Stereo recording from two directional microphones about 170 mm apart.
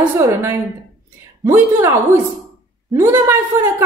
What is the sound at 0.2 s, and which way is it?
A woman's voice, 15° right (ahead or behind).